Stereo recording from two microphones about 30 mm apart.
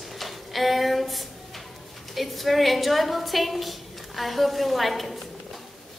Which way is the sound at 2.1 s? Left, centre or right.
Centre.